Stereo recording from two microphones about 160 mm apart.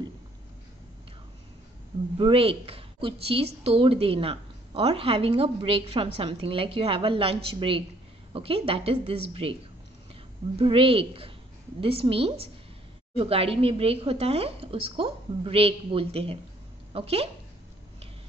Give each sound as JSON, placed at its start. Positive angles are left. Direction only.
{"t": 2.1, "sound": "a woman's voice", "side_deg": -35}